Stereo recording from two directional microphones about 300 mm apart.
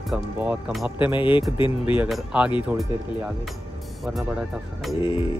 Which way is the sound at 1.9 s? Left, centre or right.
Centre.